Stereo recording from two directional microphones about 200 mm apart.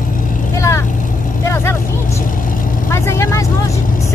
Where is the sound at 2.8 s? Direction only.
15° left (ahead or behind).